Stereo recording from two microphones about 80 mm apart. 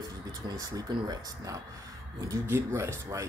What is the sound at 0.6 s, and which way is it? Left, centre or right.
Speech, right.